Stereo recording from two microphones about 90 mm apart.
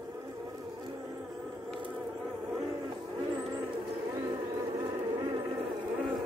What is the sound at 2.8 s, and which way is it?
Music, 55° right (ahead or behind).